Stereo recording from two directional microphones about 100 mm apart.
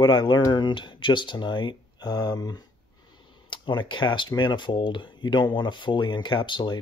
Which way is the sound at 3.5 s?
55° left (ahead or behind).